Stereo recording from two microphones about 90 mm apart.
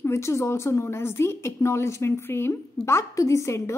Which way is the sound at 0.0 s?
30° left (ahead or behind).